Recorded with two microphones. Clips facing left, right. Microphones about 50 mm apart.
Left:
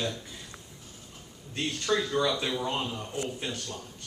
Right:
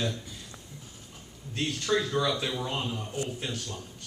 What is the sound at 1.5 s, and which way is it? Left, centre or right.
A man's voice, centre.